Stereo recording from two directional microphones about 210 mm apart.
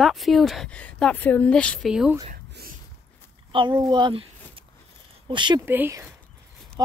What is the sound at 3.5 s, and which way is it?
Speech, 25° right (ahead or behind).